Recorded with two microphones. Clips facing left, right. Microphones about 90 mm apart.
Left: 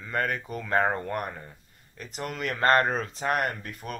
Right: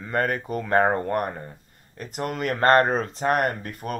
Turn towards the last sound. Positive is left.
turn(degrees=-45)  # may be behind; listen again after turning